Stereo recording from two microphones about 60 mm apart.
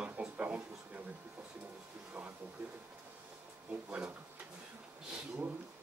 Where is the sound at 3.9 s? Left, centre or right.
Right.